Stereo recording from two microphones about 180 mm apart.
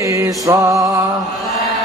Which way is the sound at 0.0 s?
15° right (ahead or behind).